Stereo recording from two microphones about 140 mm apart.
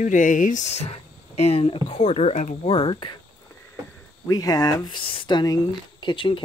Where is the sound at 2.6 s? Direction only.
35° left (ahead or behind).